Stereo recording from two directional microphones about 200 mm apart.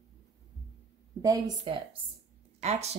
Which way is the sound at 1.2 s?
20° right (ahead or behind).